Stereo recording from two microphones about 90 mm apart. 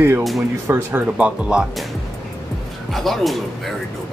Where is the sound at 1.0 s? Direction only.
15° right (ahead or behind).